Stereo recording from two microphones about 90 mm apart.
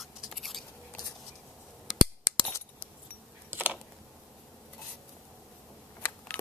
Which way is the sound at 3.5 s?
20° right (ahead or behind).